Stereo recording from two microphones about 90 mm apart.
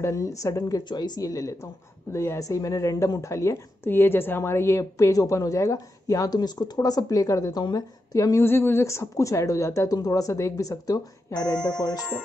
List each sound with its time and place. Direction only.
0.0 s a woman's voice: 40° left (ahead or behind)
0.8 s a woman's voice: 50° left (ahead or behind)
8.4 s a woman's voice: 25° left (ahead or behind); by 11.4 s 40° left (ahead or behind)
11.5 s speech: 15° left (ahead or behind)
11.8 s speech: 45° left (ahead or behind)